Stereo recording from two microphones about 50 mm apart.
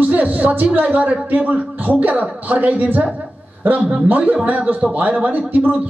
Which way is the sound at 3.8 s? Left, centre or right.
Centre.